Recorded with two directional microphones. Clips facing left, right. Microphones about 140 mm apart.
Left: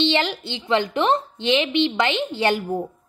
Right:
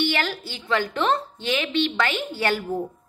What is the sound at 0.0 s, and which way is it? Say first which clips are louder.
A woman's voice: left 4 dB; 20° left (ahead or behind).